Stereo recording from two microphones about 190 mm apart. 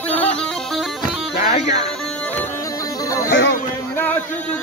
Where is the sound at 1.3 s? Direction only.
60° left (ahead or behind).